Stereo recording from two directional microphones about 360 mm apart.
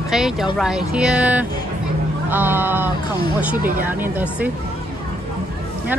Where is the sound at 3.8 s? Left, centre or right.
Centre.